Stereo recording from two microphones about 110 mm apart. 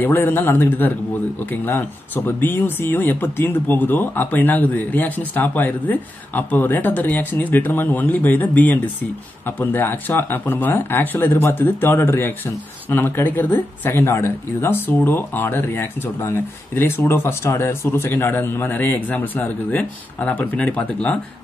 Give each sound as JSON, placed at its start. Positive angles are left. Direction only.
{"t": 0.0, "sound": "speech", "side_deg": 20}